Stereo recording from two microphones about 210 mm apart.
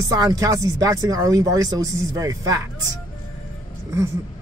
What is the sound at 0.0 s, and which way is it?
Speech, 15° right (ahead or behind).